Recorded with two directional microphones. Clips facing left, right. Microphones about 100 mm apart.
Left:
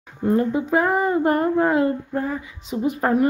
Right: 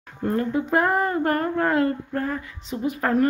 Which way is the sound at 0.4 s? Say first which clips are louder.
Left 3 dB; 20° left (ahead or behind).